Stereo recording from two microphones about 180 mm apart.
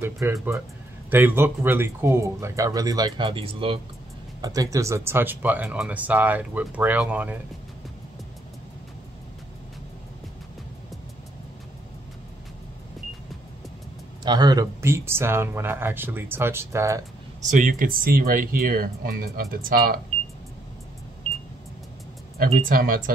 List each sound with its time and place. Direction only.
0.0 s speech: 15° right (ahead or behind)
4.4 s speech: 20° right (ahead or behind)
14.2 s speech: 25° right (ahead or behind)
17.4 s speech: 45° right (ahead or behind)
22.4 s speech: 50° right (ahead or behind)